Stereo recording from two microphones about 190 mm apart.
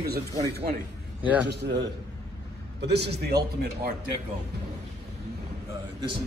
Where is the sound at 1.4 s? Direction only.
60° right (ahead or behind).